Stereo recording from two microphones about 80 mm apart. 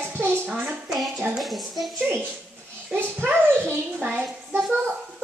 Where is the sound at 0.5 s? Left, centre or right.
Centre.